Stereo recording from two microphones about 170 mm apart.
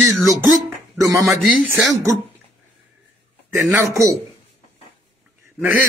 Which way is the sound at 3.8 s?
15° right (ahead or behind).